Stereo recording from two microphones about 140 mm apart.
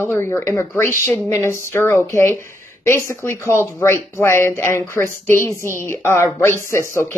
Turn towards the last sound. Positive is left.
turn(degrees=15)  # may be behind; listen again after turning